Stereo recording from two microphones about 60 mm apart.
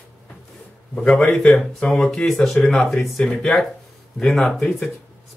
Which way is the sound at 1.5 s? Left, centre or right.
Centre.